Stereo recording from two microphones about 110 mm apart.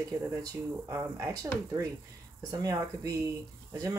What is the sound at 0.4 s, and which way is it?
Speech, 30° right (ahead or behind).